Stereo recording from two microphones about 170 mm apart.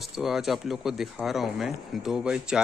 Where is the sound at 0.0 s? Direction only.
Centre (ahead or behind).